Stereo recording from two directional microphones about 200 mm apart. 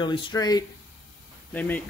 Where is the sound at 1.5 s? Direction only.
10° left (ahead or behind).